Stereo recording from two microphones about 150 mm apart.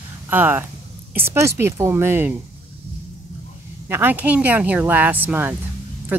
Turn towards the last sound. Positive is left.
turn(degrees=-10)  # may be behind; listen again after turning